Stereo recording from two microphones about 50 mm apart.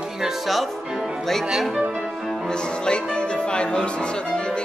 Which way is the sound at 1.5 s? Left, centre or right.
Centre.